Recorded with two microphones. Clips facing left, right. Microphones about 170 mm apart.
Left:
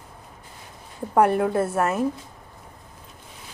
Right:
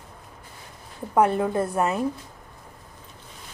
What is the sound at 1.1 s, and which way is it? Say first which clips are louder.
Speech: left 2 dB; 10° left (ahead or behind).